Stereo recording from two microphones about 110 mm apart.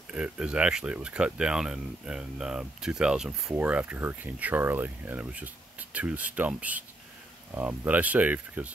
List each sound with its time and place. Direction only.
0.1 s speech: 10° right (ahead or behind)